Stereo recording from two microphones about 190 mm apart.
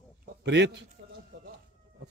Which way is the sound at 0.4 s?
65° right (ahead or behind).